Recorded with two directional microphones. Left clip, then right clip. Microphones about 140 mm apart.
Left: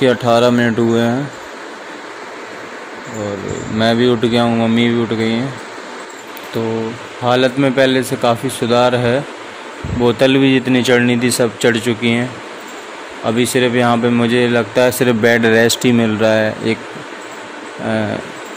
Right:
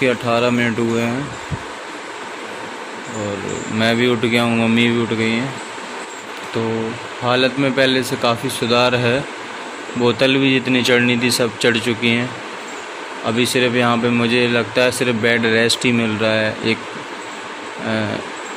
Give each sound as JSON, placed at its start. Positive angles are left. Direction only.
{"t": 0.0, "sound": "speech", "side_deg": 35}
{"t": 3.7, "sound": "speech", "side_deg": 25}
{"t": 7.2, "sound": "speech", "side_deg": 25}
{"t": 14.9, "sound": "speech", "side_deg": 40}